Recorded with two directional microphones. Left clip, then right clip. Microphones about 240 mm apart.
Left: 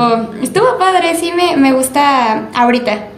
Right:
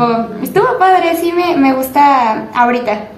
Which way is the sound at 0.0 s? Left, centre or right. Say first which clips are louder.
Left 1 dB; left.